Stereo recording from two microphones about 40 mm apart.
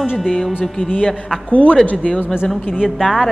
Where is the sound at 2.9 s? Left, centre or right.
Centre.